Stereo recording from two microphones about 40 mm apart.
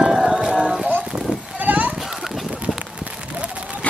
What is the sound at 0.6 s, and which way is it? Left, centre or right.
Clip-clop, centre.